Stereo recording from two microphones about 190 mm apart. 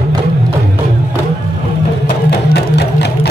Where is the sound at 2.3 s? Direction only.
65° left (ahead or behind).